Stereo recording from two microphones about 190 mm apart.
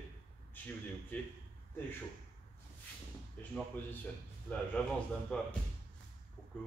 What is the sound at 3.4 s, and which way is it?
Speech, 10° left (ahead or behind).